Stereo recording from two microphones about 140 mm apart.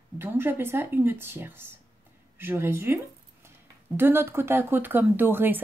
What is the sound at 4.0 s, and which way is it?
A woman's voice, 15° right (ahead or behind).